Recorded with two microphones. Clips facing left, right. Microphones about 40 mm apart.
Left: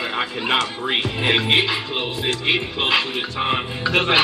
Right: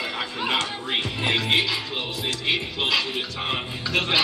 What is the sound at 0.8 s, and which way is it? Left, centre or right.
Music, left.